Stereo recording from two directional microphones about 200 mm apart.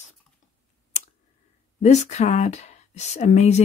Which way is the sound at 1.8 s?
35° left (ahead or behind).